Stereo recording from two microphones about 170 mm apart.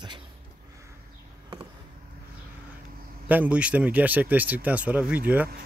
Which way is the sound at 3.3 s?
10° right (ahead or behind).